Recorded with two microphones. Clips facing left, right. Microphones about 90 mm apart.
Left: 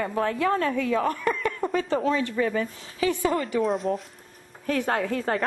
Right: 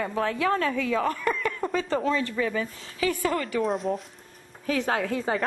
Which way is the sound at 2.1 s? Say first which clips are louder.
Left 2 dB; 15° left (ahead or behind).